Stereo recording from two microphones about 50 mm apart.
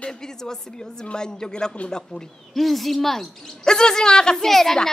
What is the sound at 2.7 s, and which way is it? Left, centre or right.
A woman's voice, centre.